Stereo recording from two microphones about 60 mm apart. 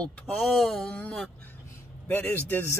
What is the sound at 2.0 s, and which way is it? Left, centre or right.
Speech, left.